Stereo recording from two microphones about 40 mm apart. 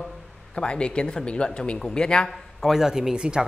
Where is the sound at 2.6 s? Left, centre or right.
Centre.